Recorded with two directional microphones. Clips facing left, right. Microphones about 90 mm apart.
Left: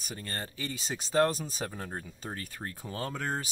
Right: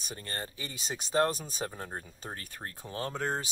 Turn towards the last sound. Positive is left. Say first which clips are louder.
# right 1 dB
turn(degrees=-25)  # may be behind; listen again after turning